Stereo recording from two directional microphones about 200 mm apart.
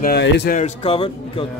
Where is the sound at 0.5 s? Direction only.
30° left (ahead or behind).